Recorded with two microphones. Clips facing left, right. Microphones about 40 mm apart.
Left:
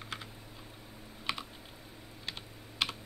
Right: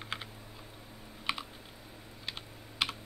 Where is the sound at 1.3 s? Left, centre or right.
Centre.